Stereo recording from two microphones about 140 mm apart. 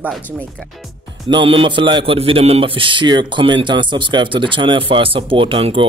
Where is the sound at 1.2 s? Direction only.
35° right (ahead or behind).